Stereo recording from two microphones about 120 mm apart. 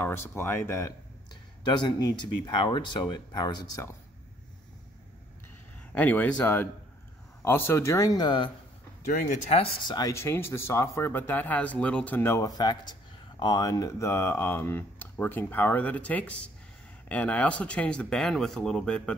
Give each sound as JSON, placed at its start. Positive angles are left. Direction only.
{"t": 0.0, "sound": "speech", "side_deg": 20}
{"t": 1.3, "sound": "speech", "side_deg": 40}
{"t": 5.9, "sound": "speech", "side_deg": 15}
{"t": 9.6, "sound": "speech", "side_deg": 35}
{"t": 10.1, "sound": "speech", "side_deg": 20}